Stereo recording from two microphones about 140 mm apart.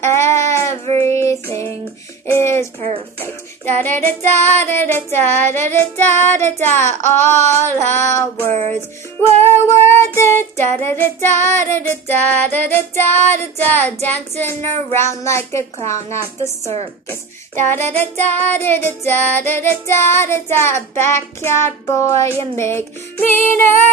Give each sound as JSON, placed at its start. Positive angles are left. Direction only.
{"t": 0.0, "sound": "child singing", "side_deg": 20}
{"t": 2.2, "sound": "a child's voice", "side_deg": 20}
{"t": 3.6, "sound": "child singing", "side_deg": 15}
{"t": 14.4, "sound": "a child's voice", "side_deg": 20}
{"t": 17.6, "sound": "child singing", "side_deg": 15}
{"t": 22.4, "sound": "a child's voice", "side_deg": 20}
{"t": 23.2, "sound": "child singing", "side_deg": 15}